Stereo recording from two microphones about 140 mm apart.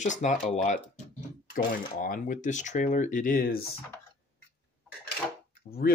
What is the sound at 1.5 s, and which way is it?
Speech, 90° left.